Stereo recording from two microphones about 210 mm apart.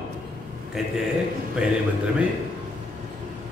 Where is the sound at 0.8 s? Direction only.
Centre (ahead or behind).